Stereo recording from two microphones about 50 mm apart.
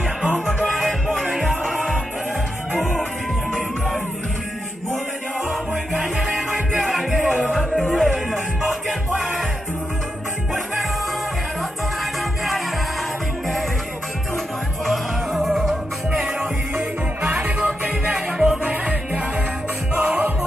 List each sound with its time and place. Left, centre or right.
0.7 s music: centre
2.8 s music: centre
5.9 s music: centre
14.9 s music: centre
16.7 s music: right
17.8 s music: centre
18.6 s music: right